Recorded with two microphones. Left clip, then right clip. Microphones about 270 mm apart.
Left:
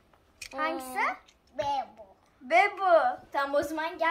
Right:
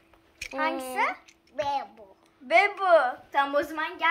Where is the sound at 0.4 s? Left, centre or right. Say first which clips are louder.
Right 3 dB; right.